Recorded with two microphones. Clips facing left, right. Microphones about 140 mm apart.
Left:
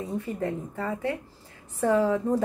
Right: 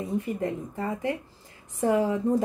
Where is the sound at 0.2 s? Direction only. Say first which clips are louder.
Right 1 dB; 15° right (ahead or behind).